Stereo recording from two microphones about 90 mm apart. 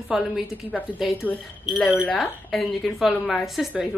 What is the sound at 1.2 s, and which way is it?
Speech, 20° left (ahead or behind).